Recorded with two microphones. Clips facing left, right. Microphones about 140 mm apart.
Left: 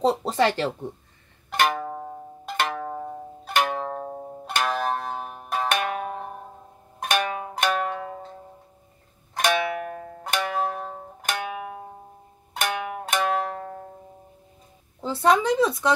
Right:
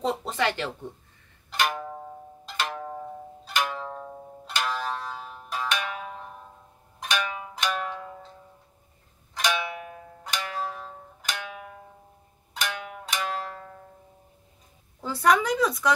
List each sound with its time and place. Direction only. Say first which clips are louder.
0.0 s speech: left 5 dB; 35° left (ahead or behind)
1.5 s music: left 5 dB; 60° left (ahead or behind)
7.0 s zither: left 5 dB; 55° left (ahead or behind)
9.3 s music: left 5 dB; 55° left (ahead or behind)
12.5 s zither: left 6 dB; 55° left (ahead or behind)
15.0 s speech: left 2 dB; 25° left (ahead or behind)